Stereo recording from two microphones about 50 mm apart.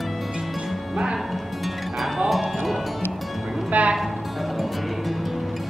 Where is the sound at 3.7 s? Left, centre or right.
Right.